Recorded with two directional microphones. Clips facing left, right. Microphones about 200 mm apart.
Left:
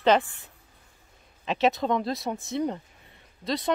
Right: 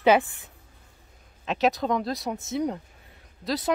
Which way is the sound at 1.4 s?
Centre (ahead or behind).